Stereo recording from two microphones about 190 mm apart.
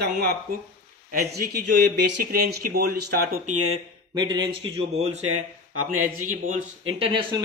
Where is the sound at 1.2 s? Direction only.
55° right (ahead or behind).